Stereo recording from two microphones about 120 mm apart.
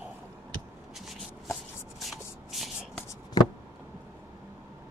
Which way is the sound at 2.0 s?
Centre (ahead or behind).